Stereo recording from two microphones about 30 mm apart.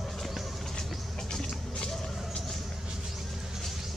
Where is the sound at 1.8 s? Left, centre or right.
Centre.